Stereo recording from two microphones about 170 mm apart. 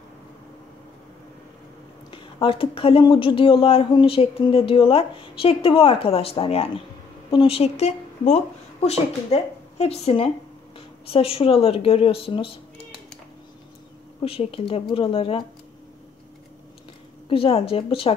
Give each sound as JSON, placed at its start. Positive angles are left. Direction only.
{"t": 2.0, "sound": "speech", "side_deg": 30}
{"t": 14.2, "sound": "speech", "side_deg": 35}
{"t": 17.3, "sound": "speech", "side_deg": 35}